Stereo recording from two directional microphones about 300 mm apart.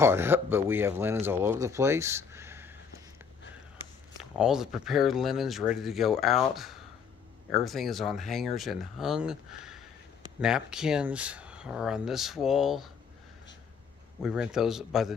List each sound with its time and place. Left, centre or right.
0.0 s speech: centre
4.2 s speech: centre
14.2 s speech: centre